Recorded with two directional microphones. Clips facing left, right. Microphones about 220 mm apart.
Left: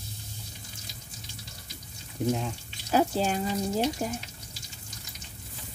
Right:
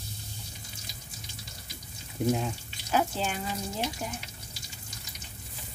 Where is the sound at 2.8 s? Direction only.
35° left (ahead or behind).